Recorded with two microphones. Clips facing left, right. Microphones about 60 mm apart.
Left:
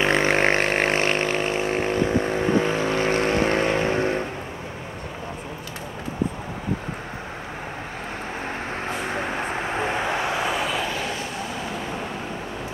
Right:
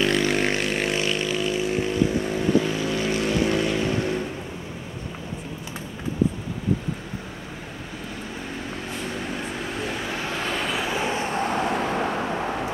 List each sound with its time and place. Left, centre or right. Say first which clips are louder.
0.0 s vehicle: left 2 dB; left
9.0 s vehicle: left 2 dB; left
10.4 s vehicle: left 3 dB; centre
10.7 s a sound: even; centre
11.4 s vehicle: right 6 dB; right